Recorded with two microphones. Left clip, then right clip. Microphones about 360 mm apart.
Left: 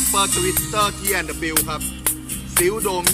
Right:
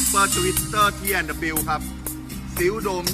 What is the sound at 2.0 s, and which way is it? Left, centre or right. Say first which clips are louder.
Music: left 6 dB; left.